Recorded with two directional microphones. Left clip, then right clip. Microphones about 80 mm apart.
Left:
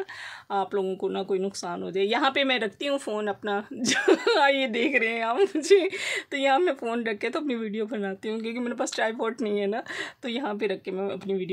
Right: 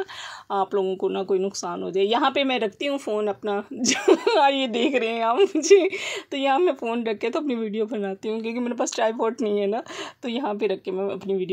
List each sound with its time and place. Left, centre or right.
1.1 s speech: right
2.9 s speech: centre